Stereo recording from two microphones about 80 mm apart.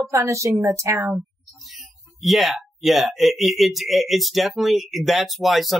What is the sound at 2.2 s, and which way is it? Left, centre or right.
Speech, centre.